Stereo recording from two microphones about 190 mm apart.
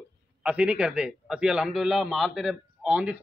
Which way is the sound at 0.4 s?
5° right (ahead or behind).